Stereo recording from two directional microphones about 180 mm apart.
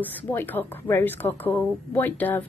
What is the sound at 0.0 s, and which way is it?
A woman's voice, 10° left (ahead or behind).